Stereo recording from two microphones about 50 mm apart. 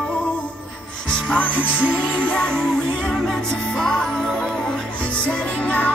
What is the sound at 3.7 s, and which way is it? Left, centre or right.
Music, centre.